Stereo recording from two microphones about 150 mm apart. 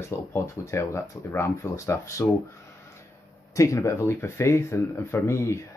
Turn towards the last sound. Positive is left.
turn(degrees=20)  # may be behind; listen again after turning